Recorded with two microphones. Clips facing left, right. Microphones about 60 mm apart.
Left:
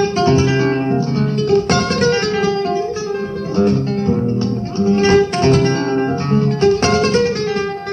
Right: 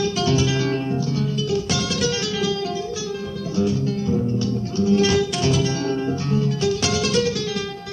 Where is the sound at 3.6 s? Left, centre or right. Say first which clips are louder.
Left 6 dB; left.